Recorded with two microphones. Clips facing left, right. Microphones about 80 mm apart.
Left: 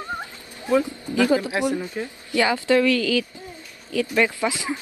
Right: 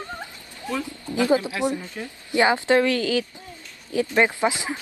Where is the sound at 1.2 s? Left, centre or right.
Right.